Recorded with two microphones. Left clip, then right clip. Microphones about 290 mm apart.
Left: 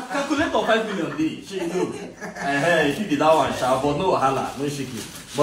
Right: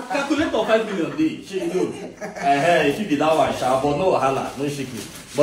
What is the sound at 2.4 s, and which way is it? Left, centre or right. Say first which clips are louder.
A man's voice: right 3 dB; centre.